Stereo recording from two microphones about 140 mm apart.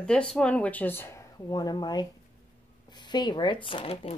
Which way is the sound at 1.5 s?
30° left (ahead or behind).